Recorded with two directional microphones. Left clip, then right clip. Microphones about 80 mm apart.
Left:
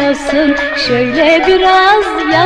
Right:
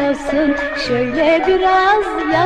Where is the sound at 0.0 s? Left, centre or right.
Left.